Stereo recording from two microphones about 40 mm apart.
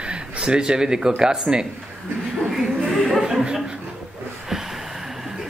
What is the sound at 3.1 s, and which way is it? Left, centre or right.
Chuckle, centre.